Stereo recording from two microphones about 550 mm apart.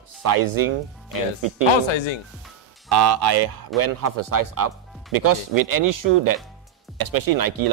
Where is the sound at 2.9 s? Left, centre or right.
Right.